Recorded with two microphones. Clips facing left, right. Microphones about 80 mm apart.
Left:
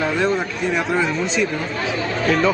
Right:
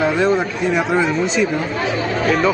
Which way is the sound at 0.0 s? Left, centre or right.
Centre.